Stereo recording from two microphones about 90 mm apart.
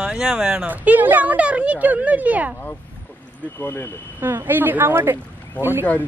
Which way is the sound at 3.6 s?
25° left (ahead or behind).